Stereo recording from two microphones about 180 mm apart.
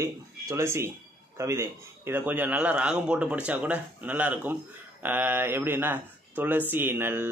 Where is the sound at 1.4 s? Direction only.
15° right (ahead or behind).